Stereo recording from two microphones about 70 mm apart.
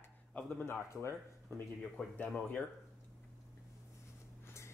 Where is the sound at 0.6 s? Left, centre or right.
Left.